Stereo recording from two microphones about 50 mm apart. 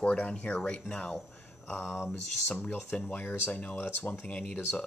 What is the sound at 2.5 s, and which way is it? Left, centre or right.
Speech, left.